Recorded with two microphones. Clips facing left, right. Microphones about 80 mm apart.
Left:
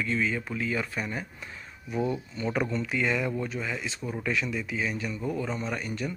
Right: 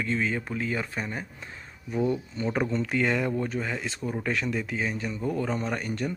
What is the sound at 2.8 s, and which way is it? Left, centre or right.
Speech, right.